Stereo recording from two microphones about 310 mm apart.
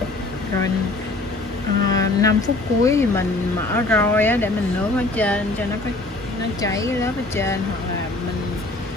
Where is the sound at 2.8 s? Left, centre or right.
Centre.